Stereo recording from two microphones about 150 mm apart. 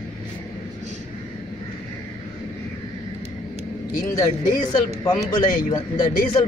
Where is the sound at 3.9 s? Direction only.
65° left (ahead or behind).